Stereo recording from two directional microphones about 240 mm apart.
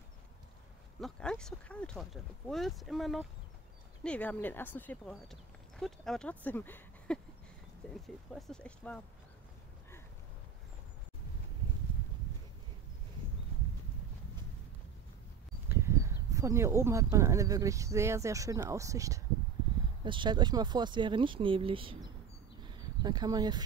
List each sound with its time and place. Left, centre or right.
1.0 s speech: centre
15.7 s speech: centre
22.6 s a sound: centre